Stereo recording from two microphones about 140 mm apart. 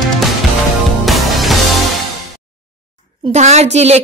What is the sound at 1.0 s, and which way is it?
Music, centre (ahead or behind).